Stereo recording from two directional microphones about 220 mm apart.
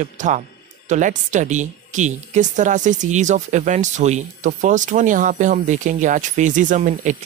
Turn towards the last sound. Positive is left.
turn(degrees=-35)  # may be behind; listen again after turning